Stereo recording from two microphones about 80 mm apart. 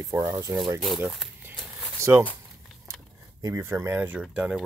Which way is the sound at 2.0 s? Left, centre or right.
Right.